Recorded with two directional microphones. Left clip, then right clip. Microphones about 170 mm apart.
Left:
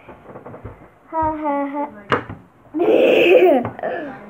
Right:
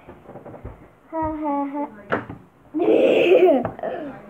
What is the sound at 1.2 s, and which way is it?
Humming, 20° left (ahead or behind).